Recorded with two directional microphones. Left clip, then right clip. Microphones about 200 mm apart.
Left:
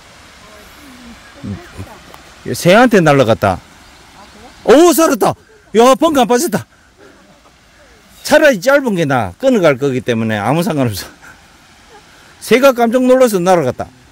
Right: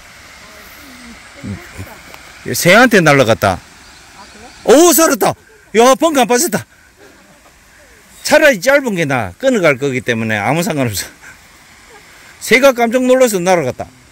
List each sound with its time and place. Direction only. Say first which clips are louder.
2.4 s a man's voice: right 1 dB; 5° left (ahead or behind)
4.6 s a man's voice: even; 10° left (ahead or behind)
8.2 s speech: even; 15° left (ahead or behind)
12.4 s speech: even; 20° left (ahead or behind)